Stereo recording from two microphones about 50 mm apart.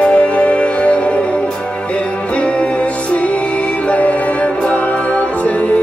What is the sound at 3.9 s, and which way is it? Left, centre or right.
Music, left.